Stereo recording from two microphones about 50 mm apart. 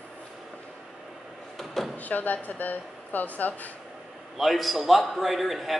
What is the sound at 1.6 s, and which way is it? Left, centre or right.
Drawer open or close, centre.